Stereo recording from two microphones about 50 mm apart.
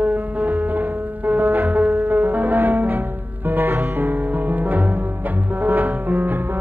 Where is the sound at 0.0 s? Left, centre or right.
Right.